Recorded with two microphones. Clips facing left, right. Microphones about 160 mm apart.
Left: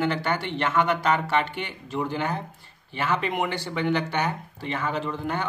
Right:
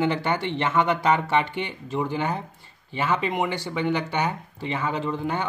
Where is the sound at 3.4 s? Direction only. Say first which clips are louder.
Right 1 dB; 10° right (ahead or behind).